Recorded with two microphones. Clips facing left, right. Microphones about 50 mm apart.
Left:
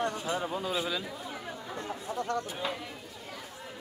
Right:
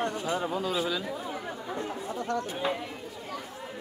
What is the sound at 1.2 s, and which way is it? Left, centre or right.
Speech, right.